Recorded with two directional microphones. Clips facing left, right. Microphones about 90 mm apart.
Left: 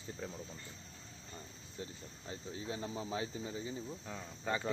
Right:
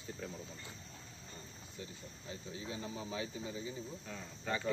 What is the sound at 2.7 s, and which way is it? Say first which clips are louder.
Speech: left 3 dB; 35° left (ahead or behind).